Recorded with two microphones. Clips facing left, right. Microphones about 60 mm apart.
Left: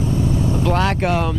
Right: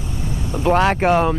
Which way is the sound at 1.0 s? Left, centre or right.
Right.